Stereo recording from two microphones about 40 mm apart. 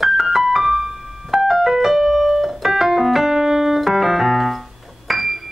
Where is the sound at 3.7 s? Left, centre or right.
Centre.